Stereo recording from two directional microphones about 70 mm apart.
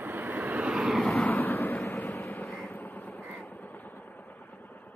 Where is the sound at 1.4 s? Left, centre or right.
Left.